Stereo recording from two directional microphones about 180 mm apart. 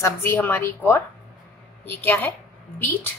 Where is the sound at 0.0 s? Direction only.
10° left (ahead or behind).